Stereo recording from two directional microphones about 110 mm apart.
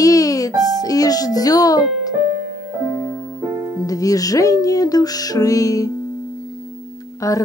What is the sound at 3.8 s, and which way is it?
Music, 30° left (ahead or behind).